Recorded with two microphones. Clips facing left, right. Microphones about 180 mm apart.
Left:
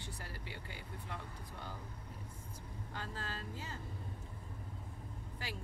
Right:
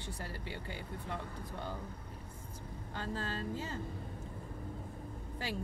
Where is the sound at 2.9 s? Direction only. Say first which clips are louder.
Right 6 dB; 30° right (ahead or behind).